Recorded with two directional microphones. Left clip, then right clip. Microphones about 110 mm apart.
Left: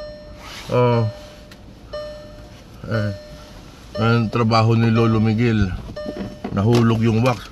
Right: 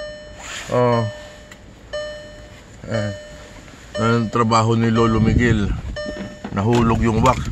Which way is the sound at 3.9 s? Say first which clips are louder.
Right 2 dB; 20° left (ahead or behind).